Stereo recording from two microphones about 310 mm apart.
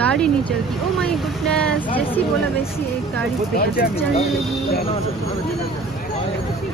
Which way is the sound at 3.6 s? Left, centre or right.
Left.